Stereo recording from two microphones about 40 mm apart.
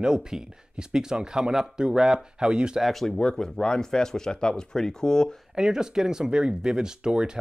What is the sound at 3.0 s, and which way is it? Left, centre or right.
Speech, centre.